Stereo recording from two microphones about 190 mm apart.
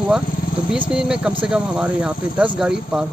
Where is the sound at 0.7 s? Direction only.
5° right (ahead or behind).